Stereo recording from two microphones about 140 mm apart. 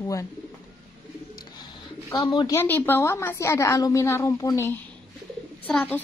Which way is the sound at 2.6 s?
15° left (ahead or behind).